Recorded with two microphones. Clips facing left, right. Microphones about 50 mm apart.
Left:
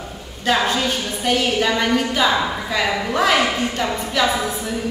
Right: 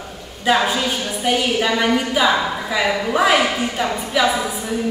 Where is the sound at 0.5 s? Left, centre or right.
Centre.